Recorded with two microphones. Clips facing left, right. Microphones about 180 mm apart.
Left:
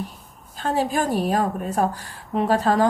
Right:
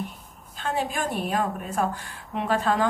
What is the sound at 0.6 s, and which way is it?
A woman's voice, 40° left (ahead or behind).